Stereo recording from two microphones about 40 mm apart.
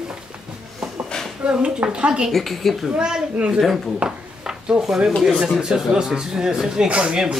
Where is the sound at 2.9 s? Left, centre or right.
Centre.